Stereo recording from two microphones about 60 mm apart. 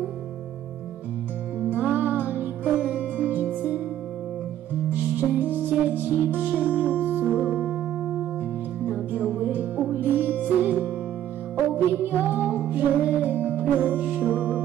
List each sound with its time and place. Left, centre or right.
1.7 s music: right
5.1 s music: right
6.5 s music: left
8.9 s music: right